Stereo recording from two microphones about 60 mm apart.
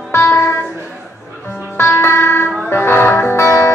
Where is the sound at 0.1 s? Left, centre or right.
Left.